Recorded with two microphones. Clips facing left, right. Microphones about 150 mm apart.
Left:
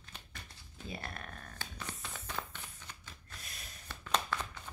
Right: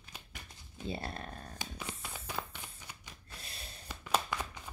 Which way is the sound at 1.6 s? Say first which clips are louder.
Right 1 dB; 10° right (ahead or behind).